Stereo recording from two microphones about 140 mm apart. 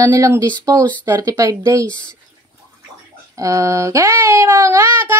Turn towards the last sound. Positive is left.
turn(degrees=-15)  # may be behind; listen again after turning